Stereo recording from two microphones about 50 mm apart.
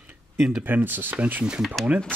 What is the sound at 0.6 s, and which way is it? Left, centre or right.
Speech, right.